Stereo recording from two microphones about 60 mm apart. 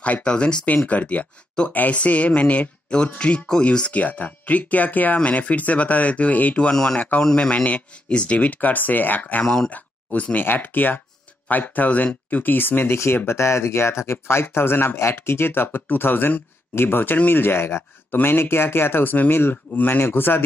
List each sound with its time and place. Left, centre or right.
0.0 s speech: centre
6.7 s speech: centre
7.0 s speech: left
9.4 s speech: centre
9.7 s speech: left